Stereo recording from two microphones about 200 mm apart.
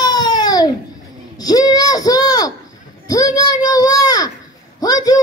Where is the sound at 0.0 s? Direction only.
20° left (ahead or behind).